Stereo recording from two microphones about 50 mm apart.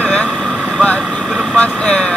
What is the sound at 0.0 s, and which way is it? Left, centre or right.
Vehicle, centre.